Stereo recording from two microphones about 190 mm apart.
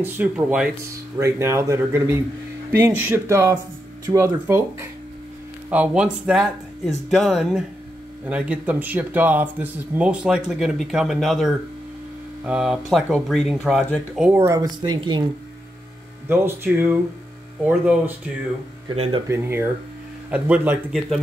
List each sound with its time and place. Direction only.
0.0 s speech: 5° right (ahead or behind); by 15.2 s 25° right (ahead or behind)
16.3 s speech: 10° right (ahead or behind)
19.2 s speech: 15° right (ahead or behind)